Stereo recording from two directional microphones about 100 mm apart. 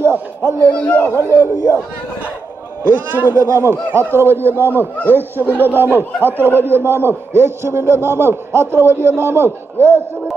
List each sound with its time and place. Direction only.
0.0 s a sound: 25° right (ahead or behind)
0.7 s speech: 10° left (ahead or behind)
1.0 s a man's voice: 25° right (ahead or behind)
2.8 s a man's voice: 20° right (ahead or behind)